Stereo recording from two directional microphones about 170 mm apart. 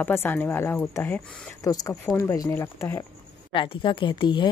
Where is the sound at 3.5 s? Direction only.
30° left (ahead or behind).